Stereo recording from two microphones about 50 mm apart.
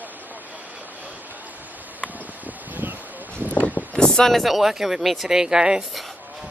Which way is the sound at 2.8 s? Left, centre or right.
Right.